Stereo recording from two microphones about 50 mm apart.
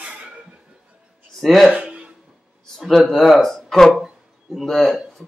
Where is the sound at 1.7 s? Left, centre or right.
Right.